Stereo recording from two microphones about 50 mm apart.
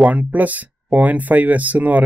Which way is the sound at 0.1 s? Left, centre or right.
Right.